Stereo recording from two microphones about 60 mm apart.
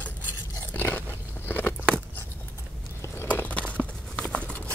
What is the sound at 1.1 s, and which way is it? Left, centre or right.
Biting, left.